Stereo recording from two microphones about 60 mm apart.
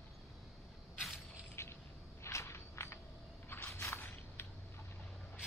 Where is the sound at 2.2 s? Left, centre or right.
Left.